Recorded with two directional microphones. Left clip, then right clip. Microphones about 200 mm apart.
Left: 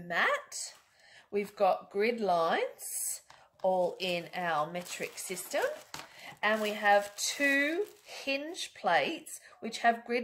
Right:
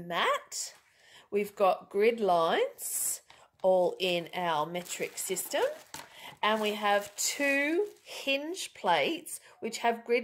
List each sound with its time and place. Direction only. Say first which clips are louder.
0.1 s speech: even; 50° right (ahead or behind)